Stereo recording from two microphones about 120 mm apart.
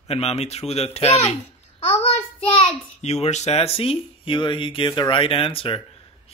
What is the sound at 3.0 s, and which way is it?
Speech, 70° left (ahead or behind).